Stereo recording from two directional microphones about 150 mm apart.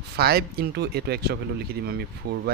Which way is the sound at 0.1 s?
90° right.